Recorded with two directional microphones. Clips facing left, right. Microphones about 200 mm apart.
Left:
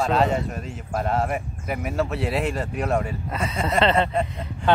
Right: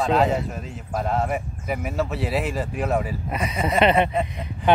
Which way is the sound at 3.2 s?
15° right (ahead or behind).